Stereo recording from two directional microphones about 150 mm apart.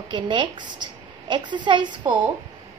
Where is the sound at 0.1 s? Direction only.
30° right (ahead or behind).